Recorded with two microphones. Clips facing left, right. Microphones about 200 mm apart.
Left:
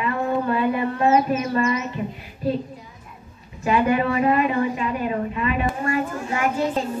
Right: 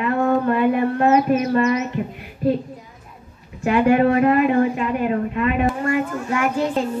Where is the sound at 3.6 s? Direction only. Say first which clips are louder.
Right 4 dB; 60° right (ahead or behind).